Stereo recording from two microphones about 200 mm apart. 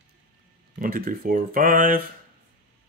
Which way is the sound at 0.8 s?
45° right (ahead or behind).